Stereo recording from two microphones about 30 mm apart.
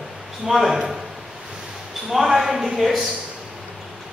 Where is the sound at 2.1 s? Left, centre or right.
Centre.